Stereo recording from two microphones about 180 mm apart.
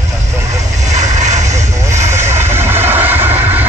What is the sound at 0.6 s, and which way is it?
Vehicle, 40° right (ahead or behind).